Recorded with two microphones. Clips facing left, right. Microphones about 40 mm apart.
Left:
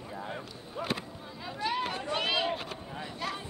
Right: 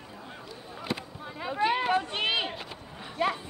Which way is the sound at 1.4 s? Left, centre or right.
Right.